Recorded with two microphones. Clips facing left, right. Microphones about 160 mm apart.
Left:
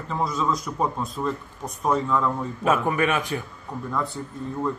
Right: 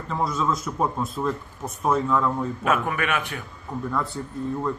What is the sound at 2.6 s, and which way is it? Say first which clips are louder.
Speech: left 4 dB; 30° left (ahead or behind).